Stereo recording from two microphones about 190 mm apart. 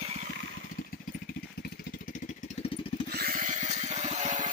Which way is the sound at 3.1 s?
55° right (ahead or behind).